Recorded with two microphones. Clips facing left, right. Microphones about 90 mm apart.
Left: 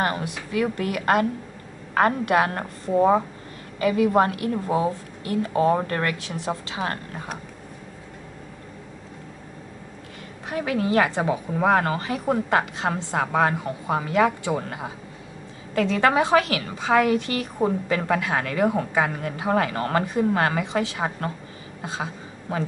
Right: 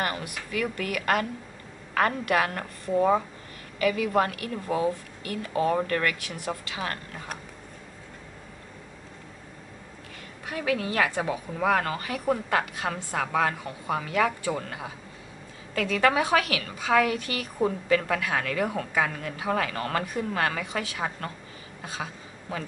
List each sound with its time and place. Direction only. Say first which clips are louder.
0.0 s a woman's voice: left 5 dB; 30° left (ahead or behind)
10.5 s a woman's voice: left 5 dB; 30° left (ahead or behind)